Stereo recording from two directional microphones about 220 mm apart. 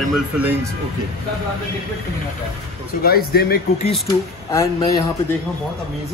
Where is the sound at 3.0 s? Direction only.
45° left (ahead or behind).